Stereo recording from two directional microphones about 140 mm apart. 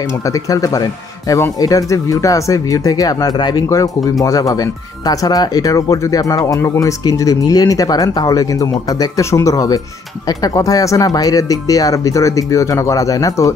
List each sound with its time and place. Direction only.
0.3 s speech: 25° left (ahead or behind)